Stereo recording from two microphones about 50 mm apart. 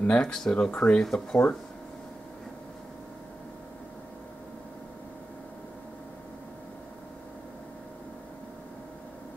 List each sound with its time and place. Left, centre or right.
0.0 s speech: centre
1.0 s speech: centre